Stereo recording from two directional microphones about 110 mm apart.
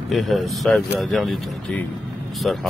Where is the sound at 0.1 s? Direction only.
Centre (ahead or behind).